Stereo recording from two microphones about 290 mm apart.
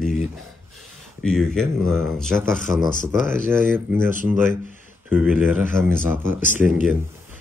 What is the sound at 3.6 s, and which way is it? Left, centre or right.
Speech, centre.